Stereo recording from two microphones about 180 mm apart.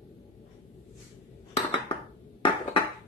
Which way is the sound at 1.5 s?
30° left (ahead or behind).